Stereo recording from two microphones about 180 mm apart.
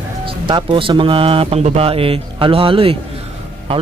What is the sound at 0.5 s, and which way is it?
Speech, 25° right (ahead or behind).